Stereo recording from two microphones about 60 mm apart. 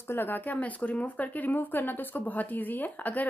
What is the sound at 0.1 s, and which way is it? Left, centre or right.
Speech, left.